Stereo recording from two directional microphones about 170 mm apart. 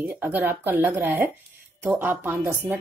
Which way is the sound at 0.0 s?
15° right (ahead or behind).